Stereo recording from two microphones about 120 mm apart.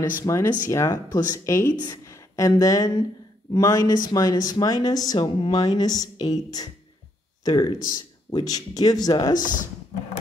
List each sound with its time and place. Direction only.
0.2 s speech: 25° left (ahead or behind)
2.0 s a sound: 25° left (ahead or behind)
3.5 s speech: 30° left (ahead or behind)